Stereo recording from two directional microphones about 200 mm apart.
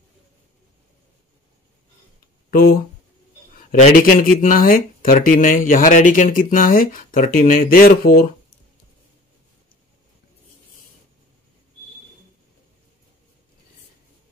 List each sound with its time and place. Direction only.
2.5 s speech: 50° left (ahead or behind)
3.8 s speech: 45° left (ahead or behind)